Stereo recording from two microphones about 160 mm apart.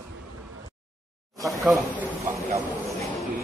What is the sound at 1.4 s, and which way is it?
Speech, centre (ahead or behind).